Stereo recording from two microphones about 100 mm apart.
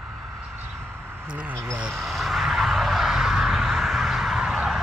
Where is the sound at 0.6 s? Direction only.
20° right (ahead or behind).